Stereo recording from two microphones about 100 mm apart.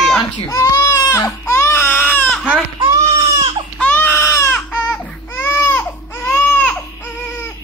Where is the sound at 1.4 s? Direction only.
25° left (ahead or behind).